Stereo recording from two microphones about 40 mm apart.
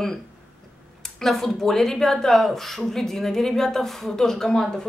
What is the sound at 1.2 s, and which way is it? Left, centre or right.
Speech, centre.